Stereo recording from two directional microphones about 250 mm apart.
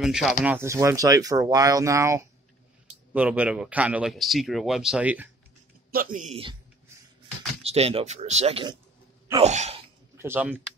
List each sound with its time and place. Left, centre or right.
0.0 s a man's voice: centre
5.9 s a man's voice: right
7.6 s speech: right
10.1 s speech: centre